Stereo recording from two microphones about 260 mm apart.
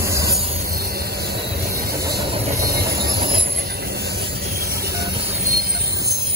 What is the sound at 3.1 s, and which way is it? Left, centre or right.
Train, right.